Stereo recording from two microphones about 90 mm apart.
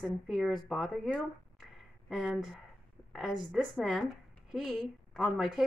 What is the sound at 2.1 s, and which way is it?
A woman's voice, 5° right (ahead or behind).